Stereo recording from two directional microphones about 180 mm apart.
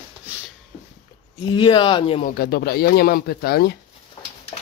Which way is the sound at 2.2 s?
55° left (ahead or behind).